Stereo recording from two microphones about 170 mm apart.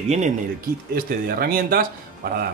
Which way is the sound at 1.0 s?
60° right (ahead or behind).